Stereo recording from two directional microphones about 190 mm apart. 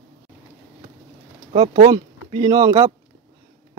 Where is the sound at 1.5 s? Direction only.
30° right (ahead or behind).